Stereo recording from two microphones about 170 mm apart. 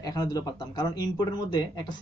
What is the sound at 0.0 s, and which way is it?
Speech, 20° left (ahead or behind).